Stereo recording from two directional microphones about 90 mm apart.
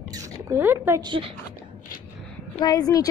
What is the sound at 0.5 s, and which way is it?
Speech, 25° right (ahead or behind).